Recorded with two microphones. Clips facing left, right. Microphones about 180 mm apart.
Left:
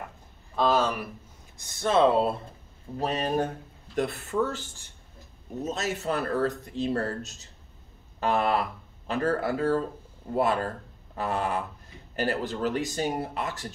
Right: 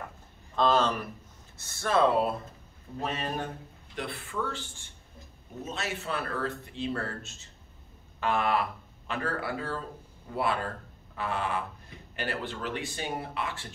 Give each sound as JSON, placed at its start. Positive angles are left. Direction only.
{"t": 0.6, "sound": "speech", "side_deg": 10}
{"t": 3.0, "sound": "speech", "side_deg": 35}